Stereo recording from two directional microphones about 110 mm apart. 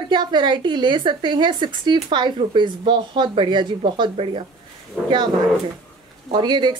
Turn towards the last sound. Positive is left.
turn(degrees=-40)  # may be behind; listen again after turning